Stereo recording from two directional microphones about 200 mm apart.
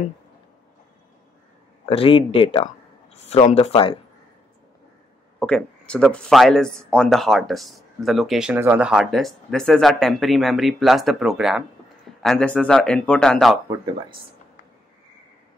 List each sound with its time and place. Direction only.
1.9 s speech: 25° left (ahead or behind)
5.4 s speech: 5° left (ahead or behind)